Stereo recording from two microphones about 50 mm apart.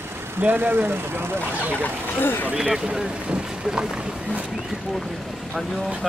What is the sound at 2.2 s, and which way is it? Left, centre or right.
Speech, left.